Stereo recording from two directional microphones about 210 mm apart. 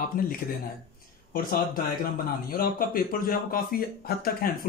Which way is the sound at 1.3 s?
45° left (ahead or behind).